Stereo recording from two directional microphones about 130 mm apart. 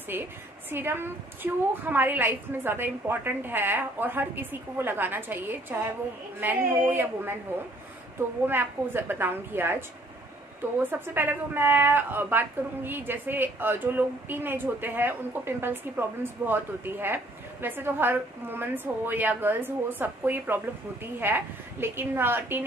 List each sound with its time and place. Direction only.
0.1 s a woman's voice: 15° right (ahead or behind)
8.5 s a woman's voice: 15° right (ahead or behind)